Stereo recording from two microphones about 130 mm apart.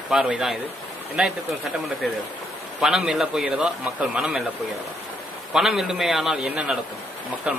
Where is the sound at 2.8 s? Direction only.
5° right (ahead or behind).